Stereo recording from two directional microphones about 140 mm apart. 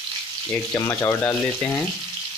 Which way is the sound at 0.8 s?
20° left (ahead or behind).